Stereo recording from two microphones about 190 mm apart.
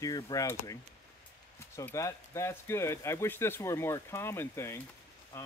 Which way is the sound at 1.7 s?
15° left (ahead or behind).